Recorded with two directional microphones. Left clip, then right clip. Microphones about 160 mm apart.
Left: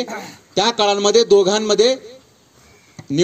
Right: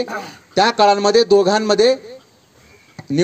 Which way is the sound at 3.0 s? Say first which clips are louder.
Right 2 dB; 35° right (ahead or behind).